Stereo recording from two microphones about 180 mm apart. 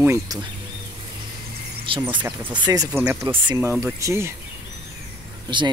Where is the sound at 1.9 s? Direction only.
30° right (ahead or behind).